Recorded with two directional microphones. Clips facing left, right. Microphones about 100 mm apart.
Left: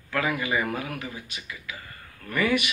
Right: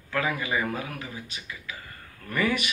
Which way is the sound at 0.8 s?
25° right (ahead or behind).